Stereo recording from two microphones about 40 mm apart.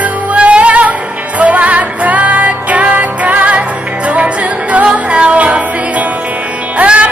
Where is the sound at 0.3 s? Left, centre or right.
Right.